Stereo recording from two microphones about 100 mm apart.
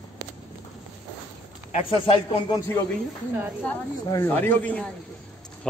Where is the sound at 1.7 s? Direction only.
60° left (ahead or behind).